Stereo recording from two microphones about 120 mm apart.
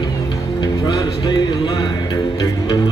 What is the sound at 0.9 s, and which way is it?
Music, 40° left (ahead or behind).